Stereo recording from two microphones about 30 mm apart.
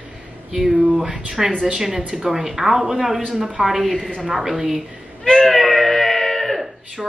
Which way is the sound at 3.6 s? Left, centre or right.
Centre.